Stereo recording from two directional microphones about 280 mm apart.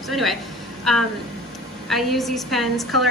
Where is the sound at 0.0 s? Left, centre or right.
Centre.